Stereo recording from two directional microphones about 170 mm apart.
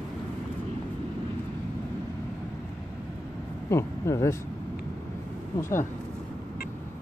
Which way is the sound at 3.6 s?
15° left (ahead or behind).